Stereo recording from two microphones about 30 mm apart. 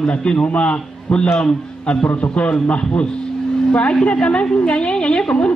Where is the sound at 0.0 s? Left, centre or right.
Left.